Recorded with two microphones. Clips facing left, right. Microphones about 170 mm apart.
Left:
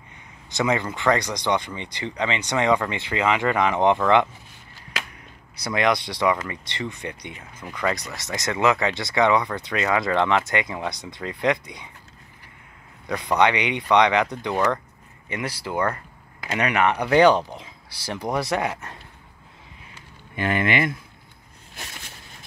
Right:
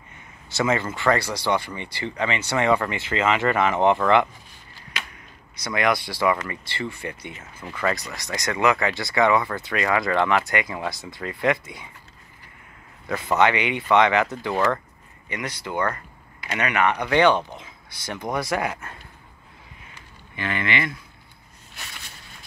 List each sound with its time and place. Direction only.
0.5 s speech: 15° left (ahead or behind)
5.6 s speech: 25° left (ahead or behind)
7.9 s speech: centre (ahead or behind)
8.2 s speech: 20° left (ahead or behind)
13.0 s a man's voice: 5° right (ahead or behind)
13.4 s speech: 20° left (ahead or behind)
15.2 s speech: 30° left (ahead or behind)
15.6 s speech: 10° left (ahead or behind)
16.5 s speech: 30° left (ahead or behind)
20.3 s speech: 45° left (ahead or behind)